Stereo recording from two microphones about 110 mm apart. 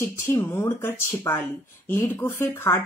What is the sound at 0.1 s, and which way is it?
A woman's voice, 20° left (ahead or behind).